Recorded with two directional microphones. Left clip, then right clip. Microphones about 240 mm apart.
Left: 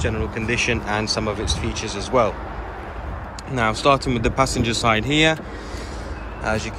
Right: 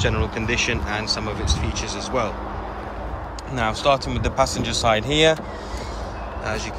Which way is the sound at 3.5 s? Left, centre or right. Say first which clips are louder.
Left 2 dB; centre.